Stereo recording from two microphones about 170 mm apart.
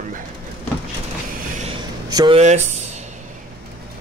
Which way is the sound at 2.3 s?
40° right (ahead or behind).